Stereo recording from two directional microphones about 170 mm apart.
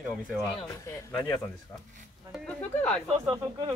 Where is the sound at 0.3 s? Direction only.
Centre (ahead or behind).